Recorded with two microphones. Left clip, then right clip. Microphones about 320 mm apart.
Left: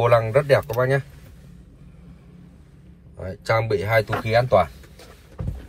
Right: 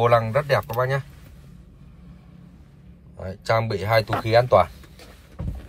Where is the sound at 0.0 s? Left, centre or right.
Centre.